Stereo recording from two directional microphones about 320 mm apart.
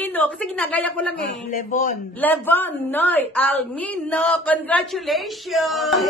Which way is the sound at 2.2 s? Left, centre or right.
Centre.